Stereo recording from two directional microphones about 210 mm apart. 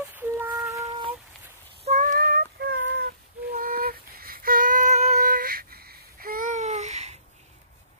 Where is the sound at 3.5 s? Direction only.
45° right (ahead or behind).